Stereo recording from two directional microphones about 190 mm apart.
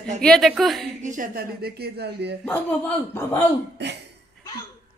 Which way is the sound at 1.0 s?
45° right (ahead or behind).